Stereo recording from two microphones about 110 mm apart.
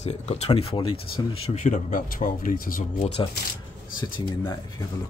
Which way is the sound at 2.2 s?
90° left.